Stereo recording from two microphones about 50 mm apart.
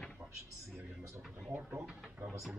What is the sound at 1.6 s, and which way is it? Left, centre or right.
Speech, right.